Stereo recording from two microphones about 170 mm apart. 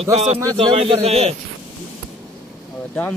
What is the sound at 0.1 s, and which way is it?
A man's voice, 40° right (ahead or behind).